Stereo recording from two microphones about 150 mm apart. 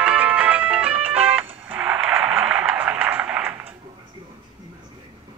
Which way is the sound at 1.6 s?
10° right (ahead or behind).